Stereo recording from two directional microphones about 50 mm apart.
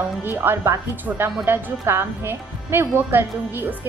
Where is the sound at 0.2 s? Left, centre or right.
Right.